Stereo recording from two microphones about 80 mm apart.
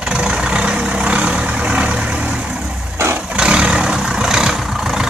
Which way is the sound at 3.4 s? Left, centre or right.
Centre.